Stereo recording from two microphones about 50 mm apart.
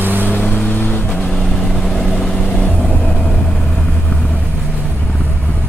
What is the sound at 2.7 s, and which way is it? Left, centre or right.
Vehicle, left.